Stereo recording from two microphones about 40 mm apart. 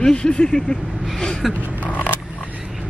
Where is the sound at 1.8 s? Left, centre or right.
Left.